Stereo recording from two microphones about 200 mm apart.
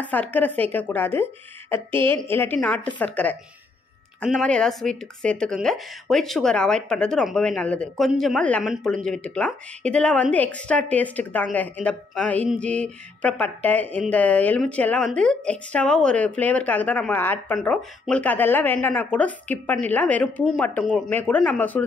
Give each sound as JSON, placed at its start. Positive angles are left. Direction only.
{"t": 0.0, "sound": "speech", "side_deg": 10}